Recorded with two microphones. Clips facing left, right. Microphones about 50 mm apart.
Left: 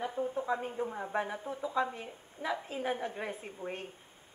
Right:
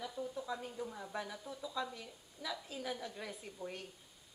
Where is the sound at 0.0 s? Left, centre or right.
Left.